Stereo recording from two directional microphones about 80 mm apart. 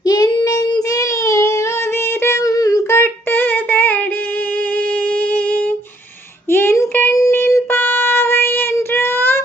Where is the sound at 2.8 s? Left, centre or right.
Left.